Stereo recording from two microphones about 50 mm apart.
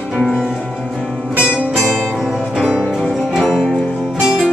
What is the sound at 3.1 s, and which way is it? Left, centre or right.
Music, centre.